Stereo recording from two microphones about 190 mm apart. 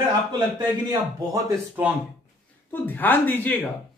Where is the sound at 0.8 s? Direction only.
15° right (ahead or behind).